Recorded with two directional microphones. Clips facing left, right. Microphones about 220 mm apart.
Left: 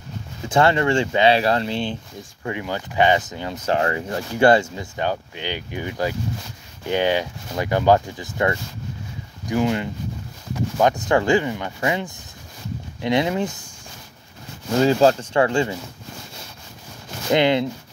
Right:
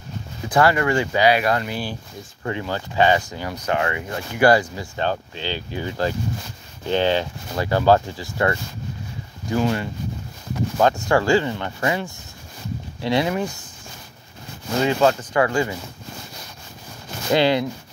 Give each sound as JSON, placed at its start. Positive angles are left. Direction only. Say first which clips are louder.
{"t": 0.5, "sound": "speech", "louder": "left 1 dB", "side_deg": 25}
{"t": 14.8, "sound": "speech", "louder": "left 3 dB", "side_deg": 35}
{"t": 17.3, "sound": "speech", "louder": "even", "side_deg": 20}